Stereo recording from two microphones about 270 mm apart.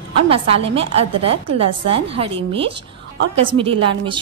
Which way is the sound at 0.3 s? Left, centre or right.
Right.